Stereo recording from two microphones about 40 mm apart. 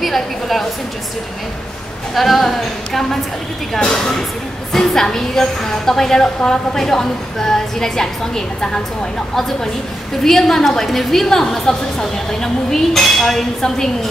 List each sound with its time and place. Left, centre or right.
0.0 s a woman's voice: centre
2.1 s a woman's voice: centre
10.2 s a woman's voice: centre